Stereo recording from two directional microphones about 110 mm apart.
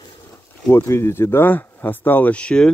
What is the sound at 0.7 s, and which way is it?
Speech, 25° left (ahead or behind).